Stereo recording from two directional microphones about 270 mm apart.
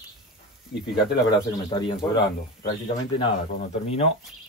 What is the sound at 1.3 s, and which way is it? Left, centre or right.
Speech, centre.